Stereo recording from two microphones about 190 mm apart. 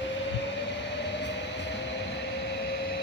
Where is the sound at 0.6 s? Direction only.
65° left (ahead or behind).